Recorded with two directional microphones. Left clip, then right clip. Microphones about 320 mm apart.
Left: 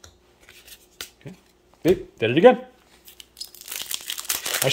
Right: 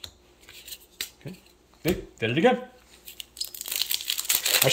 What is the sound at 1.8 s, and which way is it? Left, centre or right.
Speech, centre.